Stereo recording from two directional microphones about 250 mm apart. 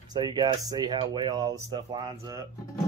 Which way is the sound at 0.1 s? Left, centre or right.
Centre.